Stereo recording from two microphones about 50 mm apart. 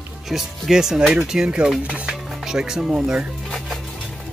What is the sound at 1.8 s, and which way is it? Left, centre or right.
Speech, right.